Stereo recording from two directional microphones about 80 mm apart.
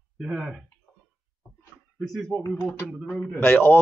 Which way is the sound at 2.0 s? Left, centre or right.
Centre.